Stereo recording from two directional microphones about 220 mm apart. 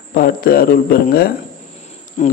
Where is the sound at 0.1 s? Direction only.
40° left (ahead or behind).